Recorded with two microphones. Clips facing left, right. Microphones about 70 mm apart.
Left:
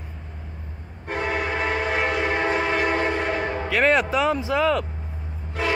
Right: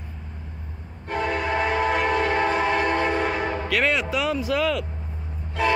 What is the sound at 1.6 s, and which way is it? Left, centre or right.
Train, centre.